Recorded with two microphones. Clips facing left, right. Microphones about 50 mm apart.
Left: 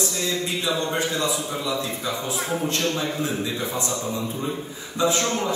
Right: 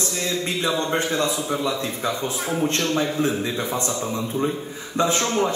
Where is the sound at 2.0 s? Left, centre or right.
Right.